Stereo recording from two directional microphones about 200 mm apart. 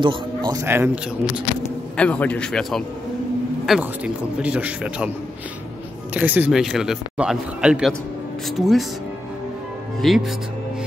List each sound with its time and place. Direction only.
0.0 s a man's voice: 25° right (ahead or behind)
0.7 s a man's voice: 10° right (ahead or behind)
2.0 s a man's voice: 5° left (ahead or behind)
6.1 s a man's voice: 10° right (ahead or behind)
10.0 s a man's voice: centre (ahead or behind)